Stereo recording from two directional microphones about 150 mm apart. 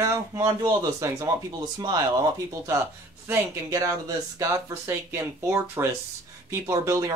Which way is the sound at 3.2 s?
15° right (ahead or behind).